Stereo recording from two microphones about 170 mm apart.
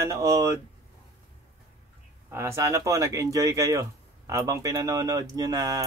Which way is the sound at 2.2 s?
15° right (ahead or behind).